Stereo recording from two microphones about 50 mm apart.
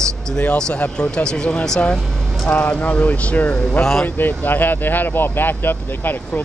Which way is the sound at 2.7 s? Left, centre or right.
Left.